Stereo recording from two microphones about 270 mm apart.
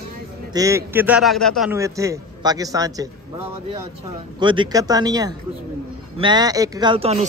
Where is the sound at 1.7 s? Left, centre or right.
Centre.